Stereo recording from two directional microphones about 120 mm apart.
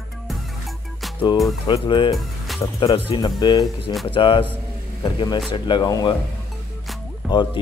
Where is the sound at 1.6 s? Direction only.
45° left (ahead or behind).